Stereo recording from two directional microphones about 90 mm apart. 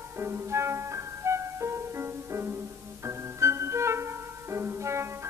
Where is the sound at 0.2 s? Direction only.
30° right (ahead or behind).